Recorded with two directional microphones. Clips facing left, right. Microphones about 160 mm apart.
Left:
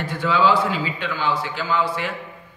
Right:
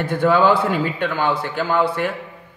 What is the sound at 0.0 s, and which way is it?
A man's voice, 55° right (ahead or behind).